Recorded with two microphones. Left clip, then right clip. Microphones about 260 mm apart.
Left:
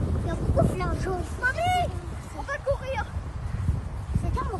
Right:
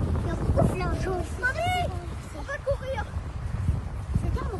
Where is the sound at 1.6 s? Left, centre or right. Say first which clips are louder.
Left 5 dB; centre.